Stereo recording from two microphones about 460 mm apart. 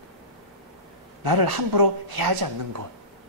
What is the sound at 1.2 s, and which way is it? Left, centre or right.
A woman's voice, right.